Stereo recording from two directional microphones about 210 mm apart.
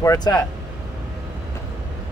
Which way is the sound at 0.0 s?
15° left (ahead or behind).